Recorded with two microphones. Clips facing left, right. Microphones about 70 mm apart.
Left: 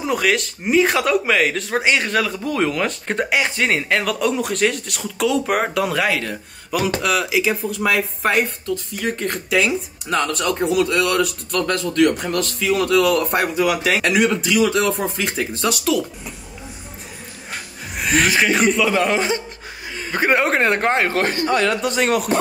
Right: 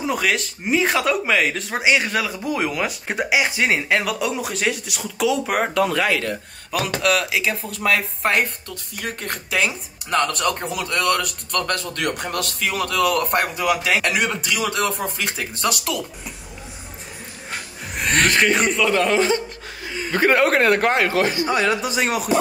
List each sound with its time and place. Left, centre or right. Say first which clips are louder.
0.0 s speech: left 2 dB; centre
17.5 s speech: even; centre; by 21.5 s left
21.5 s speech: left 2 dB; centre